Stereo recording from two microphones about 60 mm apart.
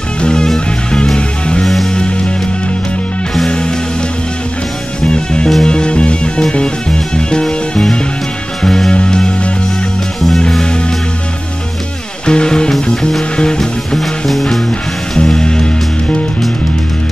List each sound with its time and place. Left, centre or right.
0.2 s music: centre
3.4 s music: centre
5.0 s music: centre
10.5 s music: centre
12.3 s music: centre